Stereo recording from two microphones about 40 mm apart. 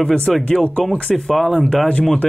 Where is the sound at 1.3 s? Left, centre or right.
Centre.